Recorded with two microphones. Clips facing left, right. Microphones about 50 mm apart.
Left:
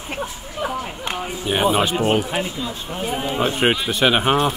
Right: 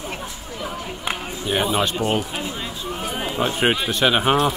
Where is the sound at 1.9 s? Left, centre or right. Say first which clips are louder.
Left 3 dB; left.